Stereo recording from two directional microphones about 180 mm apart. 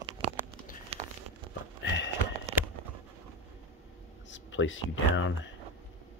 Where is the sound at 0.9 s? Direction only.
35° right (ahead or behind).